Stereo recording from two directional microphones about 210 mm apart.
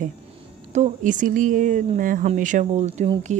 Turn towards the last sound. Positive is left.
turn(degrees=-35)  # may be behind; listen again after turning